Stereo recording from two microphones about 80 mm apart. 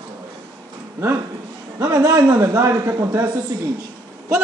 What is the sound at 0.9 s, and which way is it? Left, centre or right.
Speech, right.